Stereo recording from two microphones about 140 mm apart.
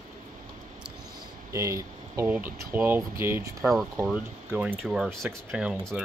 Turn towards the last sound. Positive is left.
turn(degrees=0)  # may be behind; listen again after turning